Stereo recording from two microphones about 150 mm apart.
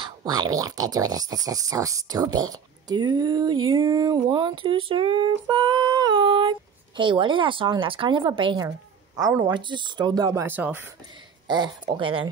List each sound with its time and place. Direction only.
0.2 s speech: 25° right (ahead or behind)
8.6 s a sound: 20° right (ahead or behind)
9.5 s speech: 30° right (ahead or behind); by 10.8 s 15° right (ahead or behind)
11.4 s speech: 30° right (ahead or behind)